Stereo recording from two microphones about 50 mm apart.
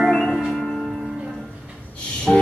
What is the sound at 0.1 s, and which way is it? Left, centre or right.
Music, centre.